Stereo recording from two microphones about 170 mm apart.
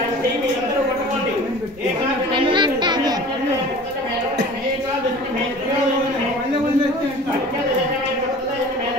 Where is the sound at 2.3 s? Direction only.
30° right (ahead or behind).